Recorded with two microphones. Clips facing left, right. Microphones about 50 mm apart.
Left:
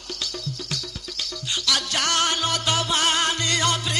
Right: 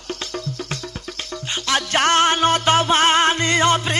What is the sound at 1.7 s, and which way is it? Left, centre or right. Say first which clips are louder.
Speech: right 7 dB; right.